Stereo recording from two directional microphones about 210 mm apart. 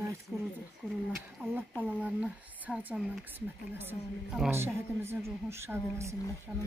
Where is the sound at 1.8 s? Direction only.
5° right (ahead or behind).